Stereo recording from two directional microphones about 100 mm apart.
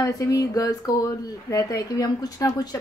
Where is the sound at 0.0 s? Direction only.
35° left (ahead or behind).